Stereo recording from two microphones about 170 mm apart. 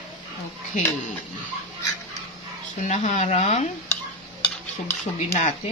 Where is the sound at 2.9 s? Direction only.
40° left (ahead or behind).